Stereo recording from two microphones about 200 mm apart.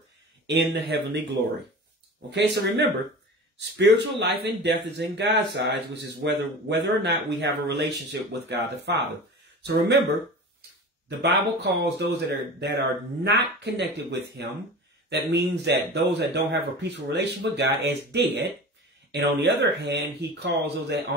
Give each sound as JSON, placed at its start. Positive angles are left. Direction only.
{"t": 0.5, "sound": "speech", "side_deg": -55}
{"t": 11.1, "sound": "speech", "side_deg": -55}